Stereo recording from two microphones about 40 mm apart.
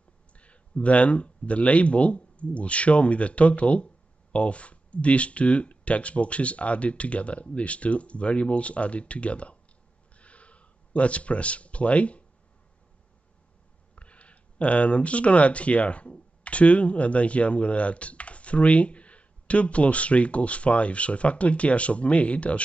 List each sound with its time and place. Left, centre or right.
0.3 s speech: left
10.1 s a sound: left
13.9 s speech: left